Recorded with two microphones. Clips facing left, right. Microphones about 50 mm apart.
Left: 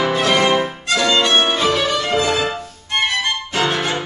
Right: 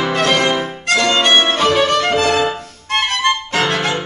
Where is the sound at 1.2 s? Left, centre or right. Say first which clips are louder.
Right 2 dB; right.